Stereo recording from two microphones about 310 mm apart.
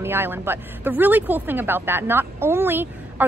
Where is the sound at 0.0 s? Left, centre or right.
Centre.